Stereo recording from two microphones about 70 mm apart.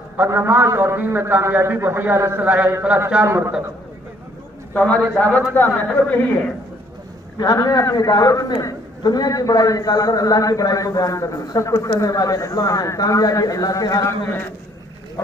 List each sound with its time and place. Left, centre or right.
0.3 s a man's voice: right
2.9 s a man's voice: centre
3.3 s a man's voice: right
4.7 s a man's voice: centre
7.5 s a man's voice: left
14.0 s a man's voice: left